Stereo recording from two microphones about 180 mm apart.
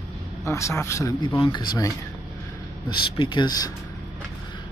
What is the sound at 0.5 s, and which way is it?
Speech, 15° left (ahead or behind).